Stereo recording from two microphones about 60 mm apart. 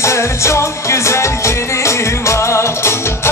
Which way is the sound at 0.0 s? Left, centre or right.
Left.